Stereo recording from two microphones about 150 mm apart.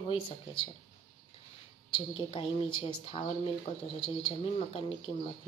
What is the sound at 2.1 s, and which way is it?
Speech, 35° left (ahead or behind).